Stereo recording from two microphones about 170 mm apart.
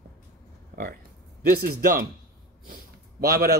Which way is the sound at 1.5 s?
60° right (ahead or behind).